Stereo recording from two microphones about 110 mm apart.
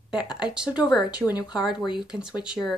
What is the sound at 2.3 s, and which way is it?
Speech, 40° left (ahead or behind).